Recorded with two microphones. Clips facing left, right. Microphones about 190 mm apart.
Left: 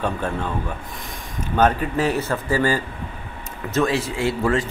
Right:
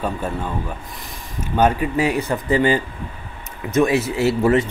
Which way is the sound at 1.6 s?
10° right (ahead or behind).